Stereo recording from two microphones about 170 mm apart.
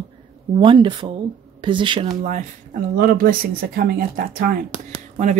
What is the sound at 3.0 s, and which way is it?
Speech, 55° right (ahead or behind).